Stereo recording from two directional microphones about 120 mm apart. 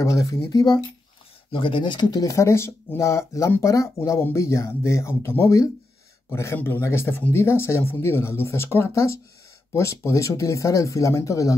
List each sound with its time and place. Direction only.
0.0 s speech: 25° left (ahead or behind)
1.5 s speech: 45° left (ahead or behind); by 11.5 s 25° left (ahead or behind)